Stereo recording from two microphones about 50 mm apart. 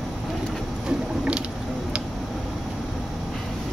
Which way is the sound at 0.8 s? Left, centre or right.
Centre.